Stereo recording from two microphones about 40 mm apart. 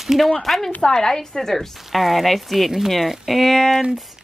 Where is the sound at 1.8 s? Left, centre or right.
Centre.